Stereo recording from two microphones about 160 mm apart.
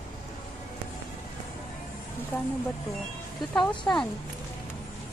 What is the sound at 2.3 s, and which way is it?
Speech, 10° left (ahead or behind).